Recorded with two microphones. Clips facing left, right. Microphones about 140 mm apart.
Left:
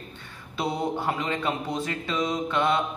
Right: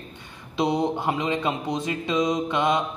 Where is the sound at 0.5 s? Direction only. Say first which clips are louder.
Right 4 dB; 20° right (ahead or behind).